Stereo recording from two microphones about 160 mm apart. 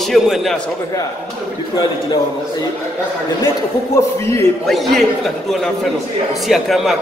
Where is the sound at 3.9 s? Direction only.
15° left (ahead or behind).